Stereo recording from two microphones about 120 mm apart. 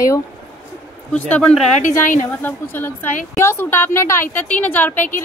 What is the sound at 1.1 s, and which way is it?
A woman's voice, 10° left (ahead or behind).